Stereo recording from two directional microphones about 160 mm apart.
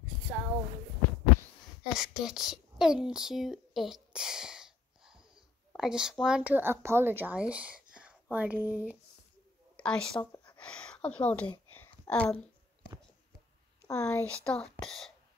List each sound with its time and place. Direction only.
0.3 s a sound: 10° right (ahead or behind)
2.0 s speech: 5° right (ahead or behind)
9.8 s speech: 5° left (ahead or behind)
11.7 s a sound: 10° left (ahead or behind)
13.8 s speech: 20° left (ahead or behind)
14.5 s speech: 5° left (ahead or behind)